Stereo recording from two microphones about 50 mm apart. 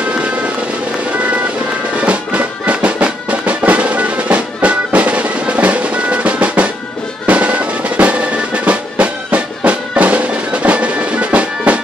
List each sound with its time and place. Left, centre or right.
2.0 s music: right
7.2 s drum: right
8.6 s music: right